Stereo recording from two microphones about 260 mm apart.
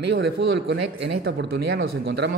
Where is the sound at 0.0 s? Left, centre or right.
Right.